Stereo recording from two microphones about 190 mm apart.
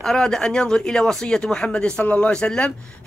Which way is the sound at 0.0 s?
Centre (ahead or behind).